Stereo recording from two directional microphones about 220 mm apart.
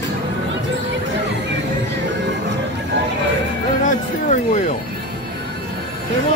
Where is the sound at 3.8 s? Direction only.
35° left (ahead or behind).